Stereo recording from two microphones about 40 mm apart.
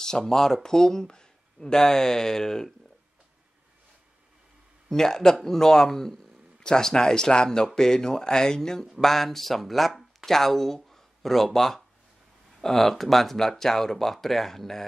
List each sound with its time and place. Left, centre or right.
0.0 s speech: centre
4.8 s speech: centre
10.9 s a sound: centre
12.5 s speech: centre